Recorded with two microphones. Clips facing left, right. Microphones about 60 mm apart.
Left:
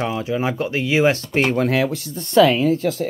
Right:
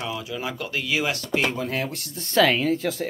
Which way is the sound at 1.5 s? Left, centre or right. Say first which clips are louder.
Left 9 dB; left.